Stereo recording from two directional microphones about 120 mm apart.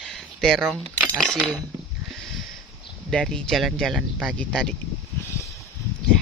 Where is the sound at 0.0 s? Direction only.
5° left (ahead or behind).